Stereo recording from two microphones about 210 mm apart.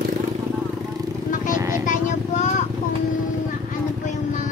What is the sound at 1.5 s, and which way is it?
Vehicle, 15° right (ahead or behind).